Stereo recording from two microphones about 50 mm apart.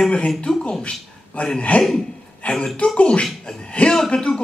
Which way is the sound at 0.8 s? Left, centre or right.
Left.